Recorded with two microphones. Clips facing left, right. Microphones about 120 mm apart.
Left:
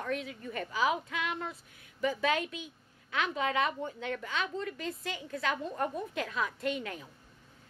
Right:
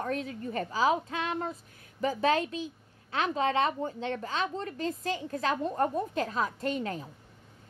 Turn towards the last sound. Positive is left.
turn(degrees=-35)  # may be behind; listen again after turning